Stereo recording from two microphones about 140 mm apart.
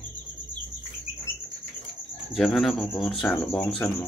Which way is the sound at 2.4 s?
Centre (ahead or behind).